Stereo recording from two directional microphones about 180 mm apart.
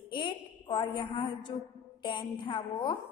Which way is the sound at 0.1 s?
25° left (ahead or behind).